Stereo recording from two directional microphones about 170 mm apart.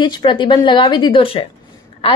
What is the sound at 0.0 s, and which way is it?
A woman's voice, 30° left (ahead or behind).